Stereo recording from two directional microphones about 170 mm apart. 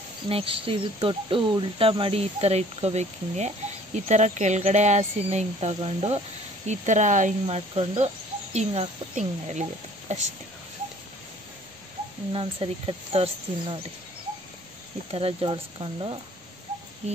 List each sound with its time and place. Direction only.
0.3 s speech: 35° right (ahead or behind)
12.3 s speech: 30° right (ahead or behind)
15.0 s speech: 35° right (ahead or behind)